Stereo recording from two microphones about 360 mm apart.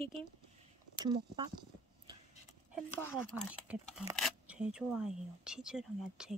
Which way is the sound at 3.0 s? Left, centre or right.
Centre.